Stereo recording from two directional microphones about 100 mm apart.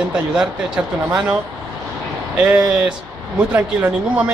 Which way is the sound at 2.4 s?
10° right (ahead or behind).